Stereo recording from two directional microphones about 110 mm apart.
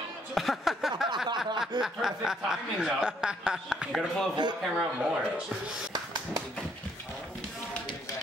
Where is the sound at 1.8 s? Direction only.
5° right (ahead or behind).